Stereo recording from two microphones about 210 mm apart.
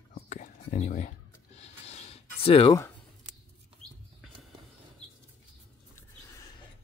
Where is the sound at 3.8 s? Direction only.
30° left (ahead or behind).